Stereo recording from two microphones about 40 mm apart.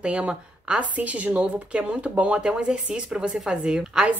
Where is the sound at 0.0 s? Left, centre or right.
Right.